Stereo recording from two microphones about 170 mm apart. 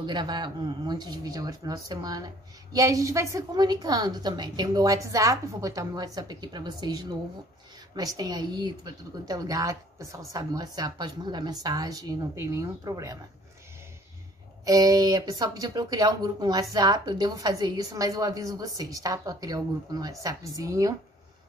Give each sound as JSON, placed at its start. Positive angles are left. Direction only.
{"t": 0.0, "sound": "speech", "side_deg": -25}
{"t": 14.6, "sound": "speech", "side_deg": -20}